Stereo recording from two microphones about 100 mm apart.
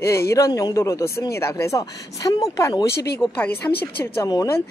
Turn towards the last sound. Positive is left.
turn(degrees=35)  # may be behind; listen again after turning